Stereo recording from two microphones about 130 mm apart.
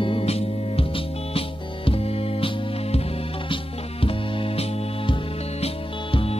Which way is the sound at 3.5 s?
45° left (ahead or behind).